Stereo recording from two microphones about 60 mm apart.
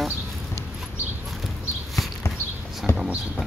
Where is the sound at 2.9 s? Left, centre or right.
Left.